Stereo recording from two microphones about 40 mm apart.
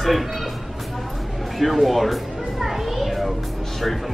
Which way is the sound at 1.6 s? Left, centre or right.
Centre.